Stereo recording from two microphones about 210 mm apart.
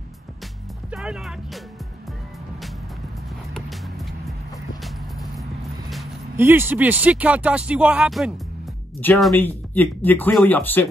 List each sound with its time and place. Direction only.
0.8 s speech: 5° right (ahead or behind)
3.5 s music: centre (ahead or behind)
6.3 s speech: 10° right (ahead or behind)
9.0 s speech: 10° left (ahead or behind)